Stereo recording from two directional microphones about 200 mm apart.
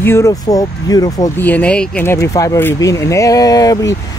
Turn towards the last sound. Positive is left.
turn(degrees=20)  # may be behind; listen again after turning